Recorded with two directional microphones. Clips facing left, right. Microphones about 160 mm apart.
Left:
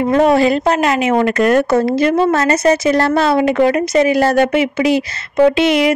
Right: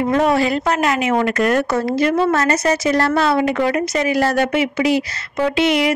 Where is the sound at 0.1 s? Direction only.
25° left (ahead or behind).